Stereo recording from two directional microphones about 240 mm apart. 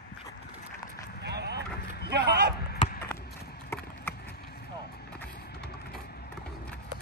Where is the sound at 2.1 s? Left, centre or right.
Right.